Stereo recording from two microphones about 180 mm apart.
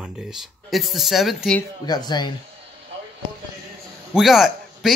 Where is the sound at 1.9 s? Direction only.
20° left (ahead or behind).